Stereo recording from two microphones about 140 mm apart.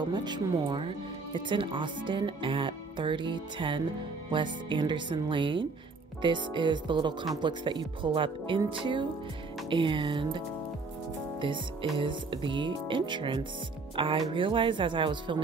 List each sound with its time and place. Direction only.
0.0 s speech: 30° right (ahead or behind)